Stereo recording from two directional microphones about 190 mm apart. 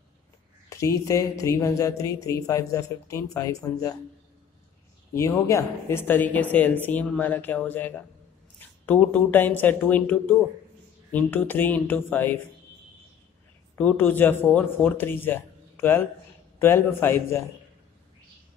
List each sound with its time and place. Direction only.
0.7 s speech: 15° left (ahead or behind)
5.1 s speech: 15° left (ahead or behind)
13.7 s speech: 10° left (ahead or behind)